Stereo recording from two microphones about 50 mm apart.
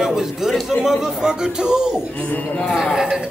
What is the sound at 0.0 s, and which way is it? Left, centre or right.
Speech, centre.